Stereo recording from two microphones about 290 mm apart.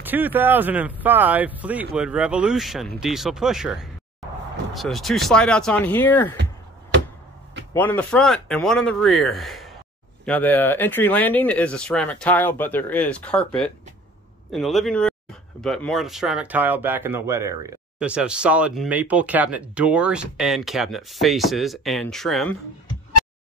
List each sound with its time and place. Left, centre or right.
0.0 s speech: centre
7.7 s speech: centre